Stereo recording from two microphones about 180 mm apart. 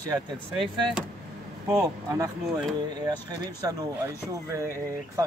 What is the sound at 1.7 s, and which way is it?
Speech, 20° right (ahead or behind).